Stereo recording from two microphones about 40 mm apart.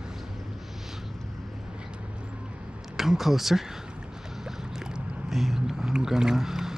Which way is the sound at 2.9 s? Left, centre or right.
Centre.